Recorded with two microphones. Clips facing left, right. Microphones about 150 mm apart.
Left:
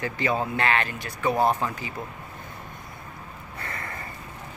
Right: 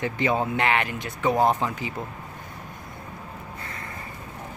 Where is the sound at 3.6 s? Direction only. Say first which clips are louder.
Left 2 dB; 65° left (ahead or behind).